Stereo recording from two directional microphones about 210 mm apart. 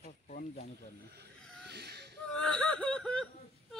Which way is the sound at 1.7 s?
50° right (ahead or behind).